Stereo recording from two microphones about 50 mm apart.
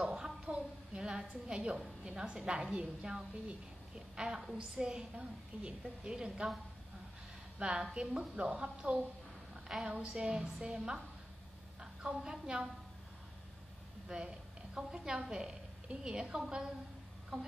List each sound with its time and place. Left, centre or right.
0.0 s a sound: centre
0.9 s a woman's voice: centre
7.5 s a woman's voice: right
14.0 s a woman's voice: centre